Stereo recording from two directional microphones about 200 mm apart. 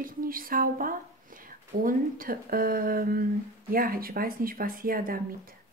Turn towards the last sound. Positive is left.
turn(degrees=-45)  # may be behind; listen again after turning